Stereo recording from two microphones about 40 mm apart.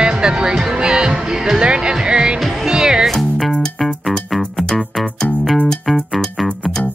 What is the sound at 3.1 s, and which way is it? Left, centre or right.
Music, centre.